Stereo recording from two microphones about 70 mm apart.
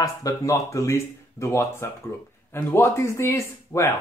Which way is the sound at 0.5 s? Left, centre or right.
Left.